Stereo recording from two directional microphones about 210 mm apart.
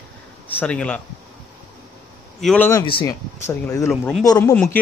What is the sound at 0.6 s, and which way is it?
Speech, 5° left (ahead or behind).